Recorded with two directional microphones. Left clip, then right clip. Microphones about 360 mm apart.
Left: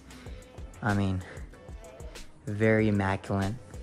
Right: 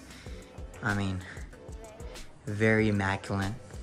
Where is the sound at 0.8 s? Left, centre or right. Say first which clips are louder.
Left 1 dB; centre.